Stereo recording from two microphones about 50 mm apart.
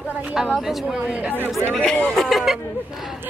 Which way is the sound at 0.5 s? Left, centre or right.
Centre.